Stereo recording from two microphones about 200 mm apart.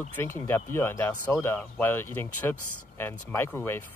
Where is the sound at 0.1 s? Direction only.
10° left (ahead or behind).